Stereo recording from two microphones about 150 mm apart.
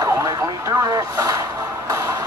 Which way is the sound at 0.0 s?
20° right (ahead or behind).